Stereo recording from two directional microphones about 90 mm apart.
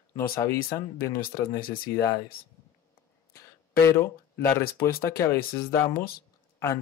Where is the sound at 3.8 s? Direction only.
30° left (ahead or behind).